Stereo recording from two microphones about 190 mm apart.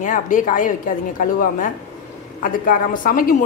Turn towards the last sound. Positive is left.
turn(degrees=45)  # may be behind; listen again after turning